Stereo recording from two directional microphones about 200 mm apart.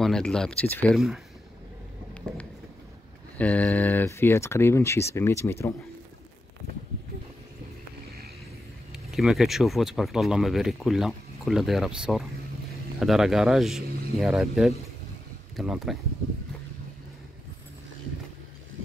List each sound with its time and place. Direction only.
0.0 s speech: 5° left (ahead or behind)
3.3 s speech: 5° left (ahead or behind)
8.9 s speech: centre (ahead or behind)